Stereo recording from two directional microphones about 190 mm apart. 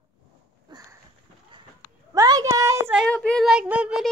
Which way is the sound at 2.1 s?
20° right (ahead or behind).